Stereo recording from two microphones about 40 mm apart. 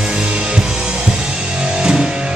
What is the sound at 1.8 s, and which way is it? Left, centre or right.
Music, centre.